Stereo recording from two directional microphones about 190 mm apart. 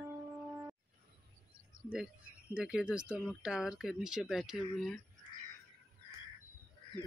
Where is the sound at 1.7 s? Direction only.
45° right (ahead or behind).